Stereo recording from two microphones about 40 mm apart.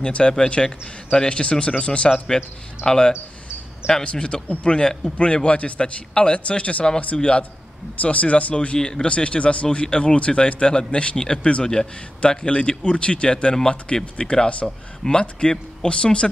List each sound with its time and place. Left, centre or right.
0.0 s speech: left
3.9 s speech: left
8.7 s speech: centre
9.0 s speech: left
11.6 s speech: centre
12.2 s speech: left